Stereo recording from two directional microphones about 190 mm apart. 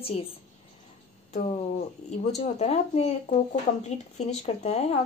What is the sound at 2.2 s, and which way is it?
Speech, 35° left (ahead or behind).